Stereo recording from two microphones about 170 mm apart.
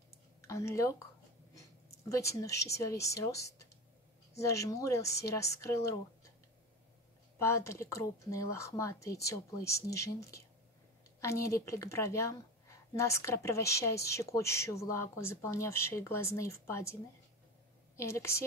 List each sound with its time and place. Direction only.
0.4 s a woman's voice: 20° left (ahead or behind)
7.3 s a woman's voice: 15° left (ahead or behind)